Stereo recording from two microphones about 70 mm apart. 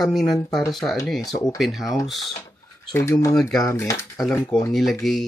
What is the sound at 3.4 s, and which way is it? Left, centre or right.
Speech, left.